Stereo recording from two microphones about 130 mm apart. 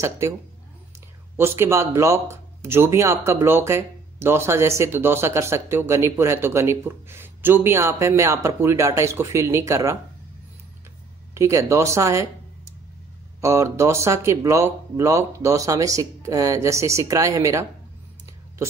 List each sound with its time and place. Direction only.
1.3 s speech: 20° right (ahead or behind)
11.3 s speech: 20° right (ahead or behind)
13.4 s speech: 20° right (ahead or behind)